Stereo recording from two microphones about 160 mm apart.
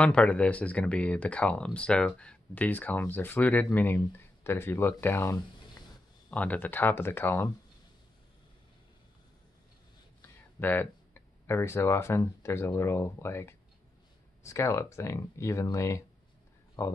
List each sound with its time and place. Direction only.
0.0 s speech: 5° left (ahead or behind)
10.6 s speech: 10° left (ahead or behind)